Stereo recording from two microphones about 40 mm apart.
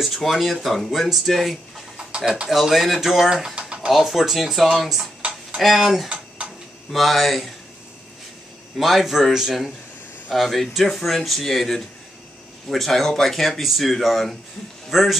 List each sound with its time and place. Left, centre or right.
0.0 s speech: centre
0.7 s speech: centre
2.0 s a sound: right
2.4 s speech: centre
3.3 s speech: centre
3.9 s speech: centre
8.7 s speech: centre
10.3 s speech: centre